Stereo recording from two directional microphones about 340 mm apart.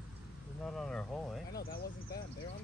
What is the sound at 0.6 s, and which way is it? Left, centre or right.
Speech, centre.